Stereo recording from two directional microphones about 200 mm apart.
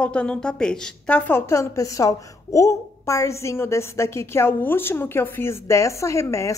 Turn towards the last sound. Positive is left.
turn(degrees=15)  # may be behind; listen again after turning